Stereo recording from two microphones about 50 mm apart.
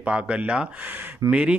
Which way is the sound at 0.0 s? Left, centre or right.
Right.